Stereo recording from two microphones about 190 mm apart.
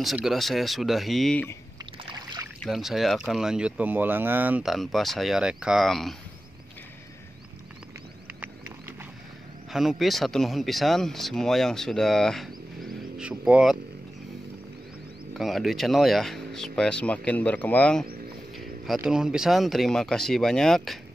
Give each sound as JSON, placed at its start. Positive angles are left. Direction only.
{"t": 0.0, "sound": "speech", "side_deg": 0}
{"t": 2.0, "sound": "rowboat", "side_deg": -20}
{"t": 2.6, "sound": "speech", "side_deg": 0}
{"t": 8.3, "sound": "clip-clop", "side_deg": -10}
{"t": 9.7, "sound": "speech", "side_deg": 0}
{"t": 15.3, "sound": "speech", "side_deg": 0}
{"t": 18.9, "sound": "speech", "side_deg": -5}